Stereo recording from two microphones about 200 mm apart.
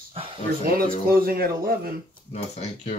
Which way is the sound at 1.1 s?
45° right (ahead or behind).